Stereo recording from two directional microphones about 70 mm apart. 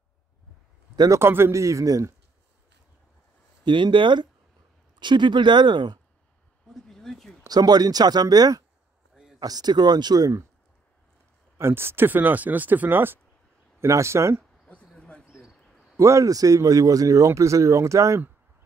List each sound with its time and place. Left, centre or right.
1.1 s speech: right
3.7 s speech: right
4.9 s speech: right
6.7 s a sound: centre
7.4 s speech: right
9.1 s a sound: centre
9.4 s speech: right
11.5 s speech: right
13.7 s speech: right
15.0 s bird: centre
15.4 s a sound: centre
16.0 s speech: right